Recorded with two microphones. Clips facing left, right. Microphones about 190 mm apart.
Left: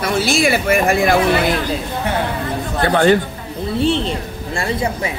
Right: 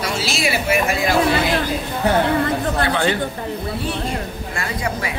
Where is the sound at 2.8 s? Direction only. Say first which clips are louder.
Left 9 dB; 50° left (ahead or behind).